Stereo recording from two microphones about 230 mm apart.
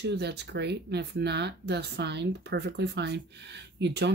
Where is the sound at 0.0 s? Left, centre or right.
Right.